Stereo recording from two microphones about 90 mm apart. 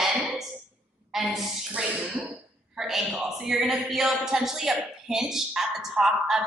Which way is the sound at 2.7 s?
5° right (ahead or behind).